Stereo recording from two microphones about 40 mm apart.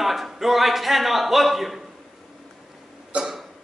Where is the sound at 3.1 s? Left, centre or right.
Right.